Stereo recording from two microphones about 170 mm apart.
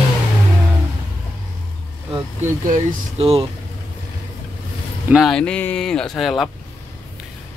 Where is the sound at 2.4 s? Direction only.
50° right (ahead or behind).